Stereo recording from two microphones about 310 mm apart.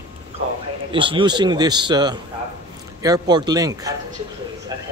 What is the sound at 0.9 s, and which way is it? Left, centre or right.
A man's voice, centre.